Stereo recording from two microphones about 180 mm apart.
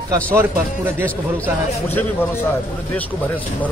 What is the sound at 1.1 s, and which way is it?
Speech, 10° left (ahead or behind).